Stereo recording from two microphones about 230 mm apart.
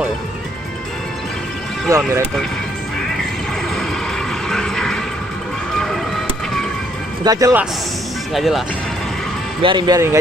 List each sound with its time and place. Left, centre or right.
1.9 s speech: centre
4.5 s vehicle: centre
7.2 s speech: centre
8.3 s speech: centre
9.6 s speech: centre